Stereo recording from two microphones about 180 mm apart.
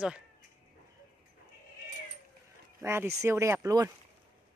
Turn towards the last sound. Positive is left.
turn(degrees=-15)  # may be behind; listen again after turning